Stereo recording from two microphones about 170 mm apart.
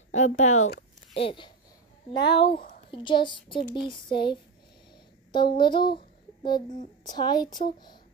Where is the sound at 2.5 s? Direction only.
55° left (ahead or behind).